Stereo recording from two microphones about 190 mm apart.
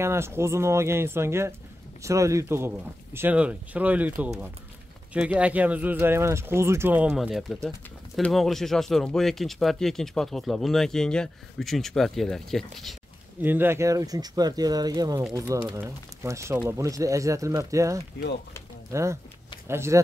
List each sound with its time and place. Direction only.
0.0 s speech: 15° right (ahead or behind); by 12.9 s centre (ahead or behind)
13.4 s speech: 10° right (ahead or behind)